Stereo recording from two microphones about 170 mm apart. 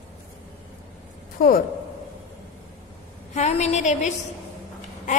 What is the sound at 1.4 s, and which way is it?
Speech, 55° left (ahead or behind).